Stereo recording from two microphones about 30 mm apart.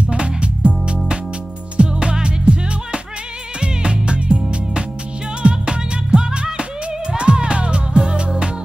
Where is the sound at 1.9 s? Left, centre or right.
Right.